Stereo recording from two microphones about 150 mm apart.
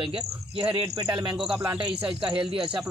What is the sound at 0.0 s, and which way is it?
A man's voice, 35° right (ahead or behind).